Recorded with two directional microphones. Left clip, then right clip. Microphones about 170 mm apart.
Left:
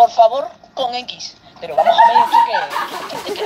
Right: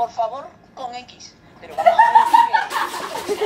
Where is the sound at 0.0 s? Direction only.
60° left (ahead or behind).